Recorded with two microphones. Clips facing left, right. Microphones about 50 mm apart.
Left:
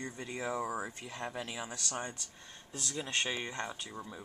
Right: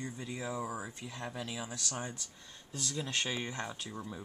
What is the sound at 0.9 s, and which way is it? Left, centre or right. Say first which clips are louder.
Speech: left 1 dB; left.